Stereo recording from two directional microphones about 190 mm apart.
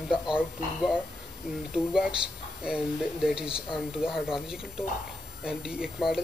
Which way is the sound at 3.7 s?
5° right (ahead or behind).